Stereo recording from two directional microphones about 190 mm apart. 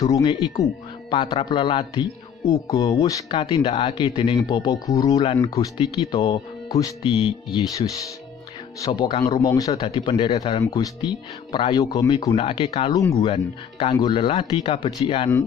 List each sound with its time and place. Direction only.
0.0 s speech: 20° left (ahead or behind)
12.4 s speech: 30° left (ahead or behind)
12.9 s speech: 15° left (ahead or behind)
13.3 s speech: 30° left (ahead or behind)